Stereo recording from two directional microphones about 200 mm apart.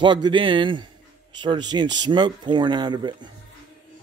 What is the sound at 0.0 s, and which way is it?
Speech, 25° right (ahead or behind).